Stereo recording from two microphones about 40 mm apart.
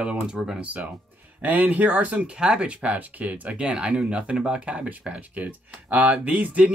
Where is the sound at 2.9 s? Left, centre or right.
Right.